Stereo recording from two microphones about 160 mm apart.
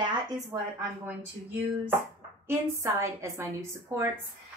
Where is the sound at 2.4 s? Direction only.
15° right (ahead or behind).